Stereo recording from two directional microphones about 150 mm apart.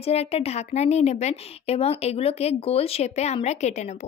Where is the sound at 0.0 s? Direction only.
45° left (ahead or behind).